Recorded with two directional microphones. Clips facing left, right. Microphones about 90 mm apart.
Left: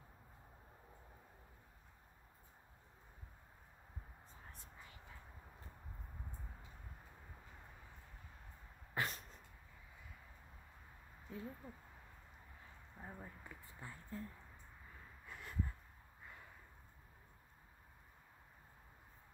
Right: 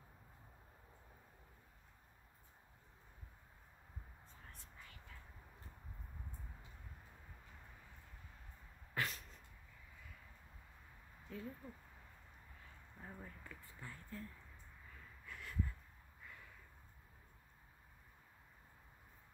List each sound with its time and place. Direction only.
4.5 s whispering: 20° left (ahead or behind)
9.0 s a sound: 25° left (ahead or behind)
11.3 s speech: 20° left (ahead or behind)
12.9 s speech: 15° left (ahead or behind)
15.2 s snort: 25° left (ahead or behind)